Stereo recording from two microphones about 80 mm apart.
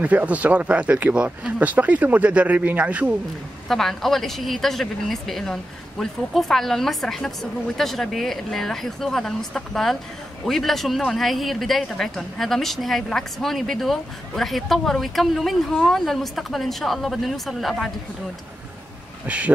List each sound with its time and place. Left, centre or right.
0.0 s speech: centre
3.6 s a woman's voice: centre
19.2 s speech: centre